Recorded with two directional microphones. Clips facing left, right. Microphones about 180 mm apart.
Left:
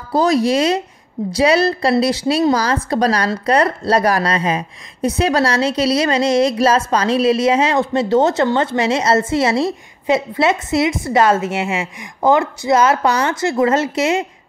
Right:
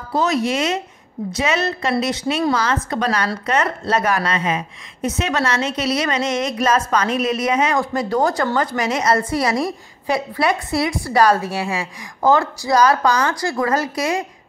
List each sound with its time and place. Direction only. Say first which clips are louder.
0.1 s a woman's voice: left 5 dB; 35° left (ahead or behind)